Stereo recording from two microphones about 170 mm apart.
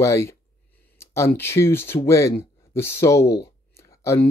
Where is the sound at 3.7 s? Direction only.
15° left (ahead or behind).